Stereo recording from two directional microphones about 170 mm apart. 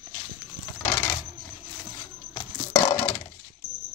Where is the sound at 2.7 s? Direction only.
20° left (ahead or behind).